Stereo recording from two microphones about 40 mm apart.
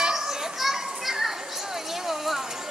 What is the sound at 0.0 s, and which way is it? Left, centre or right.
Children playing, centre.